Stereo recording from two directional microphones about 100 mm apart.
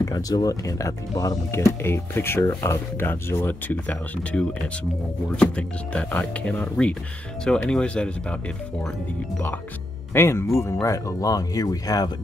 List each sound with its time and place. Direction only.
0.0 s speech: 40° left (ahead or behind); by 8.4 s 10° left (ahead or behind)
10.1 s speech: 25° left (ahead or behind)